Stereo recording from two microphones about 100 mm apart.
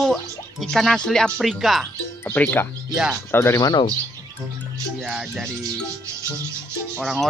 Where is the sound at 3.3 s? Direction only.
25° left (ahead or behind).